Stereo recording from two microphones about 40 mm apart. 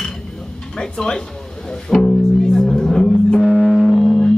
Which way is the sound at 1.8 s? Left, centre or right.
Left.